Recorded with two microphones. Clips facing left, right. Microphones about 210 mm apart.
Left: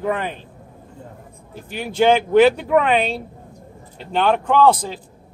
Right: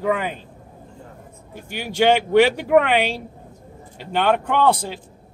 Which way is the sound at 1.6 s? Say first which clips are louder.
Left 2 dB; 70° right (ahead or behind).